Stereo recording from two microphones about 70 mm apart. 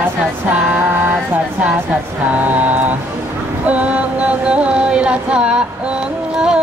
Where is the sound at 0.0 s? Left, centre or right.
Right.